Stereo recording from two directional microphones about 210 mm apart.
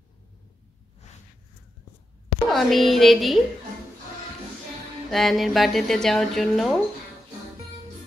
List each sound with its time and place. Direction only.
2.5 s speech: centre (ahead or behind)
5.1 s speech: centre (ahead or behind)